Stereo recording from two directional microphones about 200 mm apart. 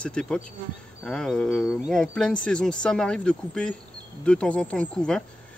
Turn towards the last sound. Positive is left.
turn(degrees=5)  # may be behind; listen again after turning